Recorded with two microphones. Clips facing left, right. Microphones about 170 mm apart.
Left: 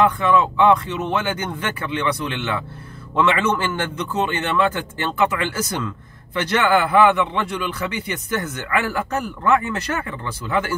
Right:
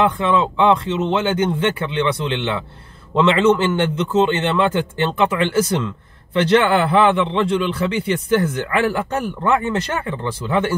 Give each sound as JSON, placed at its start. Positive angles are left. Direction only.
{"t": 0.2, "sound": "a man's voice", "side_deg": -25}